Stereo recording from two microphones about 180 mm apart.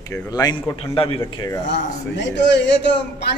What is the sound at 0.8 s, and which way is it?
Speech, 30° left (ahead or behind).